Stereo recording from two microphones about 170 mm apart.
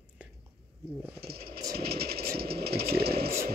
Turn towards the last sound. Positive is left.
turn(degrees=-65)  # may be behind; listen again after turning